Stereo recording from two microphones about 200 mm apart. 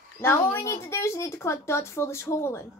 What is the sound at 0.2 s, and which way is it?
A woman's voice, 15° left (ahead or behind).